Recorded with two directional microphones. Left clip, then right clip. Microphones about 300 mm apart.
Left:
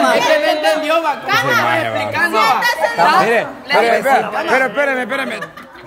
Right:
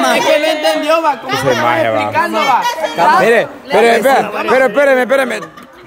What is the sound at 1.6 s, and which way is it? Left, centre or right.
A man's voice, centre.